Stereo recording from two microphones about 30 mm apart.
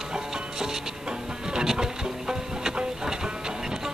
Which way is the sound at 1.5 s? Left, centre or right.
Right.